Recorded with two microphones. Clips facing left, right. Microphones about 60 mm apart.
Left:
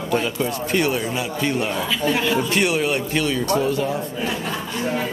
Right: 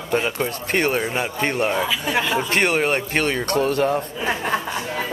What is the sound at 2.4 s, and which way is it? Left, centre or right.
A man's voice, right.